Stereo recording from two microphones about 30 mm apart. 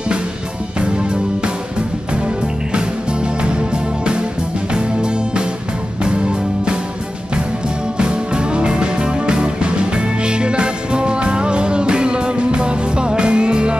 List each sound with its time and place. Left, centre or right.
0.7 s music: right
8.0 s music: right